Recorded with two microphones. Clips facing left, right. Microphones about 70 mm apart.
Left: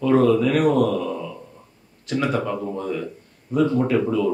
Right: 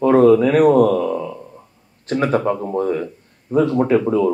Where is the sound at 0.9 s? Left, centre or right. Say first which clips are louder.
Right 6 dB; right.